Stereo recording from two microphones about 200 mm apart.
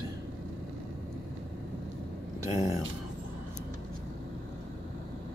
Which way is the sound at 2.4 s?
15° right (ahead or behind).